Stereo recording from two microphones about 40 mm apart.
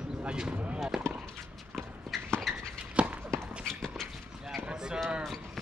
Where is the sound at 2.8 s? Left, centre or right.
Right.